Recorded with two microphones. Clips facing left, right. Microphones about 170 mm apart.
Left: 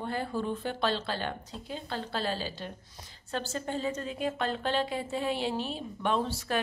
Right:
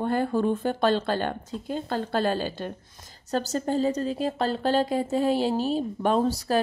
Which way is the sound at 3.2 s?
40° right (ahead or behind).